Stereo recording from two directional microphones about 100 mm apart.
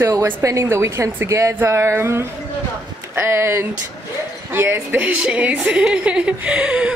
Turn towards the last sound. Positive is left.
turn(degrees=-10)  # may be behind; listen again after turning